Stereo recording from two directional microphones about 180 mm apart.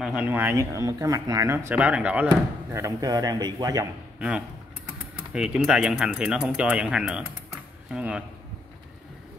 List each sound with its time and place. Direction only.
0.0 s speech: 5° right (ahead or behind); by 3.8 s 20° right (ahead or behind)
5.3 s speech: 5° right (ahead or behind)